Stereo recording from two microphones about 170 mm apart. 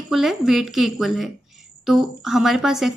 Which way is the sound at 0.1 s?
Centre (ahead or behind).